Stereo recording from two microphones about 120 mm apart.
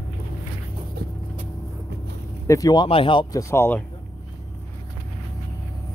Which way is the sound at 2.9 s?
45° left (ahead or behind).